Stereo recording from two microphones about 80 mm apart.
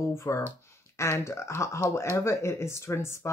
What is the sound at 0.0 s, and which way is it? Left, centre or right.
Speech, left.